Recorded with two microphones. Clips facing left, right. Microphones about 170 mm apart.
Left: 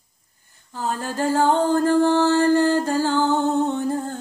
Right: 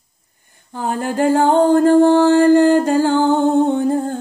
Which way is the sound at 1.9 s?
55° right (ahead or behind).